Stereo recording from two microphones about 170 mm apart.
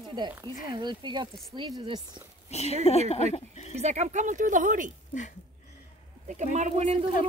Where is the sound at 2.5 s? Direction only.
40° left (ahead or behind).